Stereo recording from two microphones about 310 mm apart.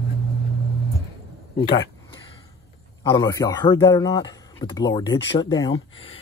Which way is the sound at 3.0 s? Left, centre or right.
Centre.